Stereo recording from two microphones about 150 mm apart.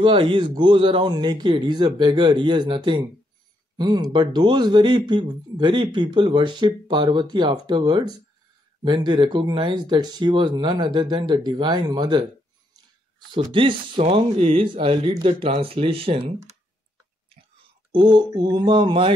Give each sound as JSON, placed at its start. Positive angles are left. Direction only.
{"t": 0.0, "sound": "speech", "side_deg": -35}
{"t": 13.3, "sound": "speech", "side_deg": -35}
{"t": 17.9, "sound": "speech", "side_deg": -30}